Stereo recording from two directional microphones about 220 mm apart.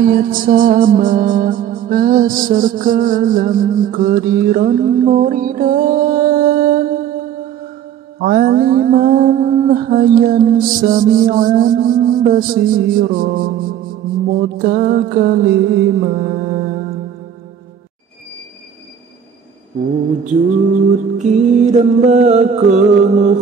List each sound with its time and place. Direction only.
0.0 s music: 40° right (ahead or behind)
21.2 s music: 35° right (ahead or behind)